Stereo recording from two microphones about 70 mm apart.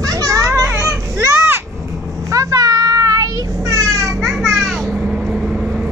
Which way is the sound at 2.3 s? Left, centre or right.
Right.